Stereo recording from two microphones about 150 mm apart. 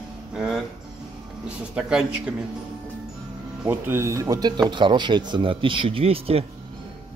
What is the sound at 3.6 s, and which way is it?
Speech, 15° right (ahead or behind).